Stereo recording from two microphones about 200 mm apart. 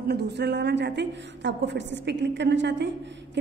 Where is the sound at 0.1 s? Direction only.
55° right (ahead or behind).